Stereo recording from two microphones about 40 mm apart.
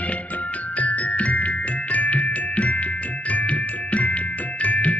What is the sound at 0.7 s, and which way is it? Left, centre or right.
Music, left.